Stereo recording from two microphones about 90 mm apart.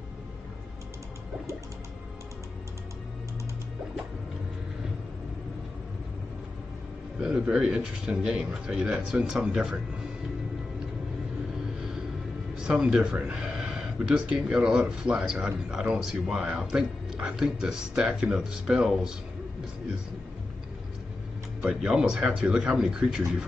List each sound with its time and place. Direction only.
7.2 s speech: 10° right (ahead or behind)
12.6 s speech: 10° right (ahead or behind)
21.5 s speech: 10° right (ahead or behind)